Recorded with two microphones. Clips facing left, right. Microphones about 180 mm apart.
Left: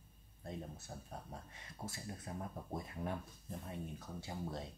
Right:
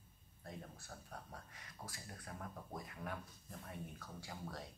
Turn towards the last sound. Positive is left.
turn(degrees=25)  # may be behind; listen again after turning